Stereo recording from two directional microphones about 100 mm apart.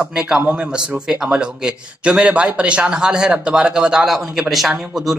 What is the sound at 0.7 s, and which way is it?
A man's voice, 5° right (ahead or behind).